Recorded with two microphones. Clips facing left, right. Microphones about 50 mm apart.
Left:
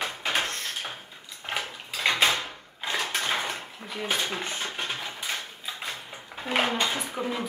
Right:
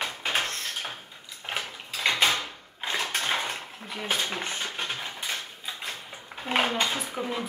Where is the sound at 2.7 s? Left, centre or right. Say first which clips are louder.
Even; right.